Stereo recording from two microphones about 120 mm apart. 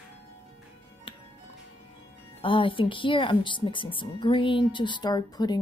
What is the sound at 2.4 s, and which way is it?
Speech, 45° left (ahead or behind).